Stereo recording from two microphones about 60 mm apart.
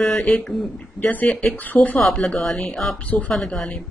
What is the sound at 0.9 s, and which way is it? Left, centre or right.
Speech, left.